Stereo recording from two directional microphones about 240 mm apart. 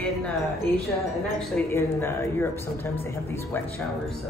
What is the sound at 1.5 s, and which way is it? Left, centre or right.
Speech, centre.